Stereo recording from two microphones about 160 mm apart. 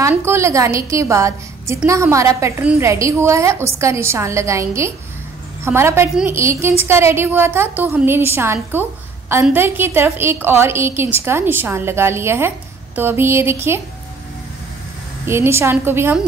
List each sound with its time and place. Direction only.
0.0 s a woman's voice: 15° right (ahead or behind)
15.2 s a woman's voice: 15° right (ahead or behind)